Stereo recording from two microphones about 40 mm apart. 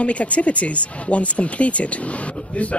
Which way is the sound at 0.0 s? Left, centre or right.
Left.